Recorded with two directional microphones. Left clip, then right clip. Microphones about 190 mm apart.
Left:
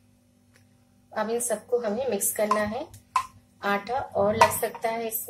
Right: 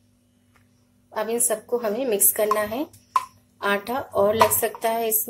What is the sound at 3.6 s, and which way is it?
Speech, 40° right (ahead or behind).